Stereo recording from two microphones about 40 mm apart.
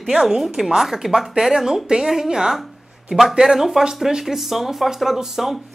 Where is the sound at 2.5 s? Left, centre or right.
Centre.